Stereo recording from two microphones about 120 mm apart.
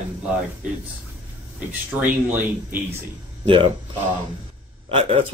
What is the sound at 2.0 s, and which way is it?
Speech, 15° right (ahead or behind).